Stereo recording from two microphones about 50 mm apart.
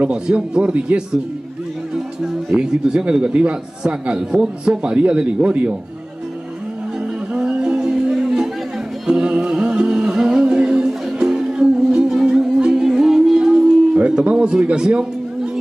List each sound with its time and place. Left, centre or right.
0.0 s a man's voice: right
2.5 s a man's voice: centre
7.4 s music: right
13.9 s speech: right